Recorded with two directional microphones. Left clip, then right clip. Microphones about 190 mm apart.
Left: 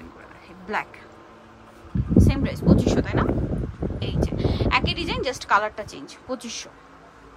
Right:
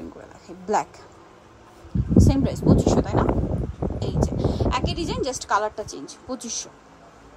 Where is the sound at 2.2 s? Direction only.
25° right (ahead or behind).